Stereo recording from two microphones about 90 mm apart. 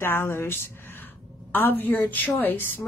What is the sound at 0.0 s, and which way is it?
A woman's voice, 25° left (ahead or behind).